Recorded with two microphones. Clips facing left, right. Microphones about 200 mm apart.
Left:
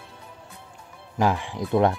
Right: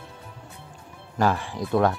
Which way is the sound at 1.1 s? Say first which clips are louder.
Even; 15° left (ahead or behind).